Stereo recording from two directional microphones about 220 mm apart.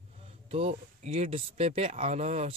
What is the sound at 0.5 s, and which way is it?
Speech, 25° right (ahead or behind).